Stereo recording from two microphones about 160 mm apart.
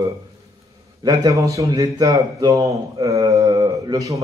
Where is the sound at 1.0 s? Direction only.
20° right (ahead or behind).